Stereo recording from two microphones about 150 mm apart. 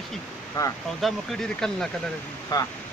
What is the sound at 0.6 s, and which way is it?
Speech, 20° left (ahead or behind).